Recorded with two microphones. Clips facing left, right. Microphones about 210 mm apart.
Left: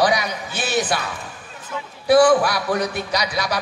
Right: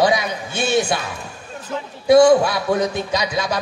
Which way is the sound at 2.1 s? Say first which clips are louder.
Right 3 dB; 25° right (ahead or behind).